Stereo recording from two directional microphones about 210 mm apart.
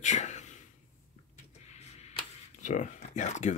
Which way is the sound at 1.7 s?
30° left (ahead or behind).